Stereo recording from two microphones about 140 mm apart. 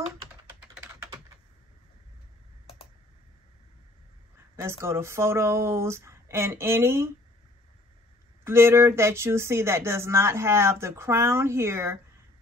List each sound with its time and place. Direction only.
4.6 s speech: 20° right (ahead or behind)
8.5 s speech: 20° right (ahead or behind)